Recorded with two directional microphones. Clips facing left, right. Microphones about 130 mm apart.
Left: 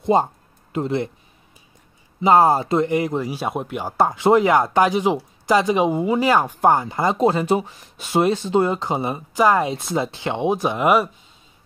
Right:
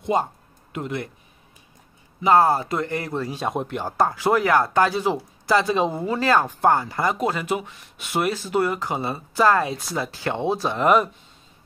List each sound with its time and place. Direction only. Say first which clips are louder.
0.0 s speech: left 5 dB; 30° left (ahead or behind)
2.2 s speech: left 2 dB; 20° left (ahead or behind)